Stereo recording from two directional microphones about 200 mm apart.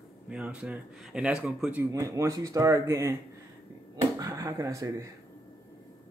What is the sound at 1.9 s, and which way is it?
A woman's voice, 15° right (ahead or behind).